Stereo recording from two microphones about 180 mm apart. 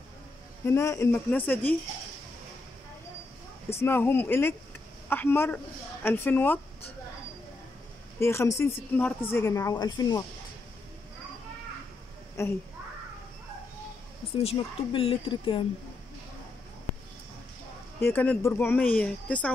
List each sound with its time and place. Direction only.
0.7 s speech: 15° left (ahead or behind)
3.8 s speech: 10° left (ahead or behind)
8.2 s speech: 15° left (ahead or behind)
12.4 s speech: 15° left (ahead or behind)
14.4 s speech: 30° left (ahead or behind)
18.0 s speech: 10° left (ahead or behind)